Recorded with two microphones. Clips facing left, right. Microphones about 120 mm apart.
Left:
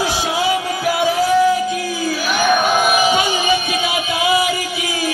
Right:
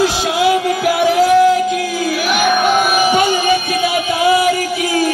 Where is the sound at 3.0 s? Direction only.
50° right (ahead or behind).